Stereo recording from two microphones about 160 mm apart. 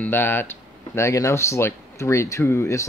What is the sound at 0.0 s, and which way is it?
Speech, 15° left (ahead or behind).